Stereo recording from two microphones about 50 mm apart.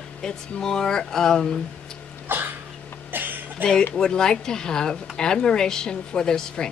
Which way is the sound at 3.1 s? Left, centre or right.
Right.